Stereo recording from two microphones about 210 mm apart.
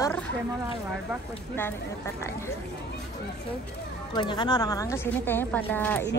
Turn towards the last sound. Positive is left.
turn(degrees=10)  # may be behind; listen again after turning